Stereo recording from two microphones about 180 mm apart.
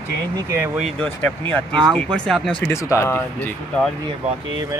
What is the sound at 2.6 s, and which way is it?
Speech, 15° left (ahead or behind).